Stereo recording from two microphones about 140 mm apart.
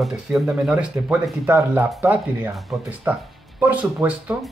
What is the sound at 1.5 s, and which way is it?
Speech, 15° right (ahead or behind).